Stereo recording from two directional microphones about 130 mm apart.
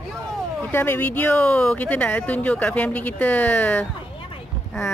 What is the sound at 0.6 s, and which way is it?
Speech, 15° left (ahead or behind).